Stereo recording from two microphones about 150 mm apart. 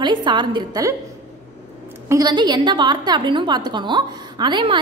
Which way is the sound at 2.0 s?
25° right (ahead or behind).